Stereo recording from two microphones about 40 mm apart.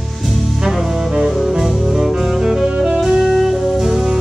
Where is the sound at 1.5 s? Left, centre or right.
Centre.